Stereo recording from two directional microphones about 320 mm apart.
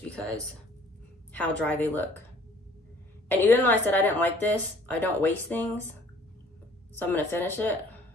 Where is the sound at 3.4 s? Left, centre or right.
Centre.